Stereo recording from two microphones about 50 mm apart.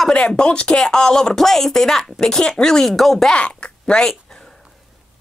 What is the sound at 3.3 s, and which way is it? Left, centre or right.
Speech, left.